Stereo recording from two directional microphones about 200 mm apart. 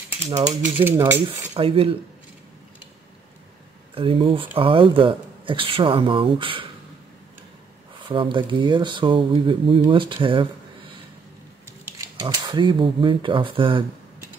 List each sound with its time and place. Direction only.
0.3 s speech: 35° right (ahead or behind)
0.8 s speech: 10° right (ahead or behind)
1.2 s cutlery: 25° right (ahead or behind)
3.9 s speech: 25° right (ahead or behind)
8.1 s speech: 25° right (ahead or behind)
11.6 s speech: 15° right (ahead or behind)